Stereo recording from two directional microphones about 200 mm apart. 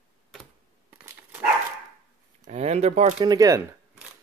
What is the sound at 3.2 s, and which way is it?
Speech, 20° right (ahead or behind).